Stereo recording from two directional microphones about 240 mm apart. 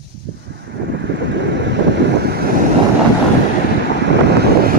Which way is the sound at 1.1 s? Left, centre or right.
Right.